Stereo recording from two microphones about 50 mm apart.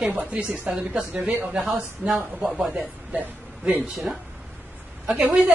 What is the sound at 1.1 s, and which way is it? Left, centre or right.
A woman's voice, right.